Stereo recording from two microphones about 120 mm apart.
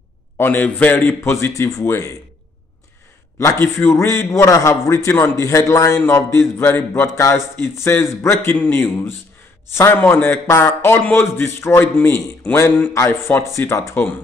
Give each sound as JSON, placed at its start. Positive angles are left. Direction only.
{"t": 0.4, "sound": "a man's voice", "side_deg": 15}
{"t": 3.3, "sound": "a man's voice", "side_deg": 25}